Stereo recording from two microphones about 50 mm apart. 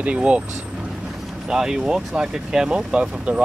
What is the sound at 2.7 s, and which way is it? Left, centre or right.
Speech, right.